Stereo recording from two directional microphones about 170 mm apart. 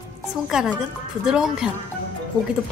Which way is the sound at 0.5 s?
5° right (ahead or behind).